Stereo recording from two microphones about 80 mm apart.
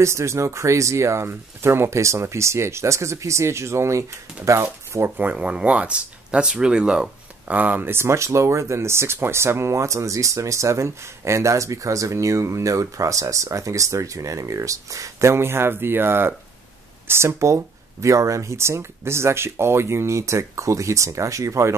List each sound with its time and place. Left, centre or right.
0.0 s speech: right
5.2 s speech: centre; by 21.7 s right